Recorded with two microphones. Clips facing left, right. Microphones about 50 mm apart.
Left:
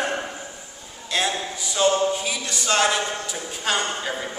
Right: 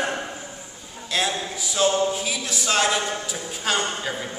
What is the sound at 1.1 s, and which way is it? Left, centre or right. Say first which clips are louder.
Speech: even; centre.